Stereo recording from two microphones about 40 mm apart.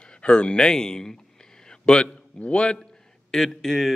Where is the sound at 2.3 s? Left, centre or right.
Left.